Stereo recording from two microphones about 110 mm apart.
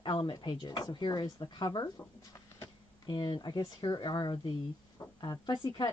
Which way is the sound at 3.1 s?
45° left (ahead or behind).